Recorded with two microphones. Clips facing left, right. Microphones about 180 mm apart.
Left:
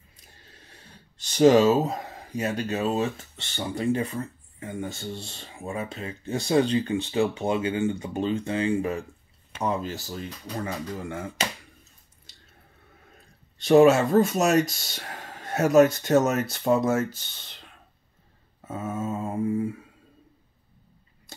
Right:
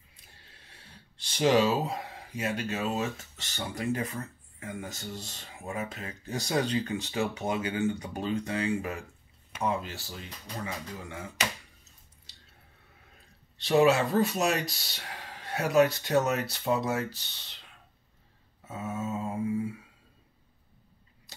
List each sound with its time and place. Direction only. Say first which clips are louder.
0.1 s a sound: left 4 dB; 40° left (ahead or behind)
3.5 s speech: left 6 dB; 30° left (ahead or behind); by 11.2 s 50° left (ahead or behind)
13.6 s speech: left 6 dB; 45° left (ahead or behind)
18.7 s speech: left 4 dB; 50° left (ahead or behind)